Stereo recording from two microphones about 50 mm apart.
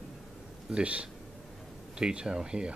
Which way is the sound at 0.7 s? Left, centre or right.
Right.